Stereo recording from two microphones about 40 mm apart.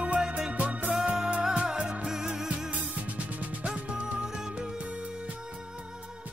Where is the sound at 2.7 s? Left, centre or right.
Right.